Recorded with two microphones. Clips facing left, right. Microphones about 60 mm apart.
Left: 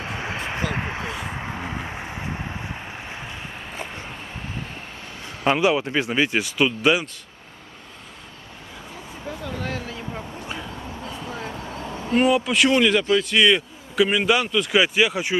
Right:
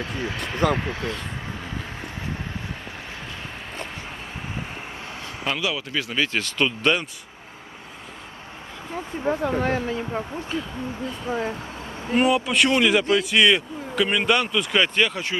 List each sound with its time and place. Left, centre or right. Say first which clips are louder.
0.0 s a sound: even; left
0.5 s speech: right 7 dB; left
1.3 s vehicle: left 3 dB; left
5.4 s speech: left 8 dB; left; by 7.1 s centre
9.2 s speech: right 8 dB; right
10.5 s speech: right 8 dB; centre
11.2 s speech: right 8 dB; right
12.1 s a man's voice: left 1 dB; centre